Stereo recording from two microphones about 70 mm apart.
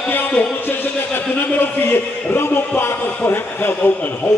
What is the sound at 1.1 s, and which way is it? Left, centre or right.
A man's voice, left.